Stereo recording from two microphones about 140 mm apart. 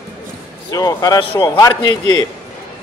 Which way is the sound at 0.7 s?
25° left (ahead or behind).